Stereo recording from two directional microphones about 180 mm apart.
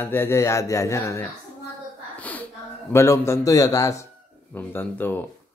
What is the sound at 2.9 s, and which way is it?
Speech, 15° left (ahead or behind).